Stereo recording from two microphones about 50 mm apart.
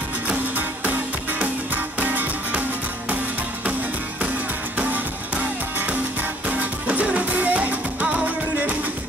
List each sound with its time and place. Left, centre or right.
0.3 s music: right
4.7 s music: right